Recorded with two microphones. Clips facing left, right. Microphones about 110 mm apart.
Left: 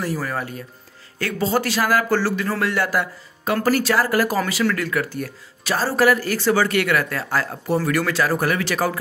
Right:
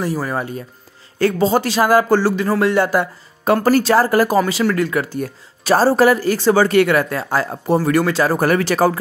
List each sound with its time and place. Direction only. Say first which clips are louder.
0.0 s speech: right 4 dB; 20° right (ahead or behind)
8.4 s speech: right 6 dB; 40° right (ahead or behind)